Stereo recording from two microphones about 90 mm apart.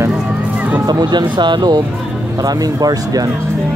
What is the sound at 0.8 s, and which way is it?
Speech, 50° right (ahead or behind).